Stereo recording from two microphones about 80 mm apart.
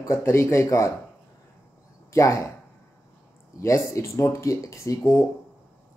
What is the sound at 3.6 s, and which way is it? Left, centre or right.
Speech, left.